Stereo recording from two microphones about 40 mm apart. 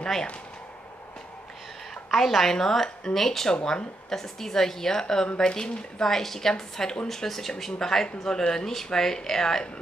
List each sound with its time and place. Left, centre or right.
0.0 s speech: centre
2.0 s speech: centre